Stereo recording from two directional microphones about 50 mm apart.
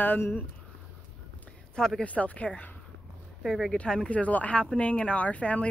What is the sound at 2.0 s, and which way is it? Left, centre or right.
Speech, left.